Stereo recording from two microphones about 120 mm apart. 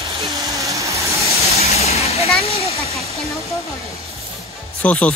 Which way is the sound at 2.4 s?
60° left (ahead or behind).